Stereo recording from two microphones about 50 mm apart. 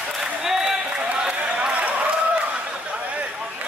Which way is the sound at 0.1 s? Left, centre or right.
Centre.